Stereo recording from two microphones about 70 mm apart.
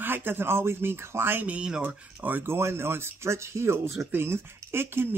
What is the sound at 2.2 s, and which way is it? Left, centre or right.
Speech, right.